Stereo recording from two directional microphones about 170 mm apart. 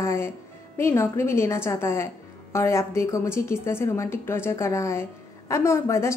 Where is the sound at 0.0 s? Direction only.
15° left (ahead or behind).